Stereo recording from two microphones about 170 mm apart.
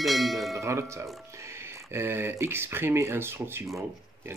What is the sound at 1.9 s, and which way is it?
Speech, 15° right (ahead or behind).